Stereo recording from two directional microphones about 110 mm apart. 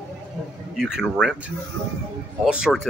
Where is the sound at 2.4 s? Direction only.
5° right (ahead or behind).